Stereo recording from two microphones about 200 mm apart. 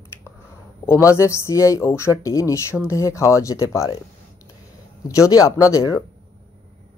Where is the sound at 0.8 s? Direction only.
15° left (ahead or behind).